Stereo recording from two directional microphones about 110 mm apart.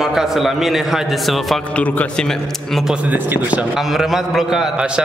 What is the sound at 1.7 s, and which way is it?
A man's voice, 15° left (ahead or behind).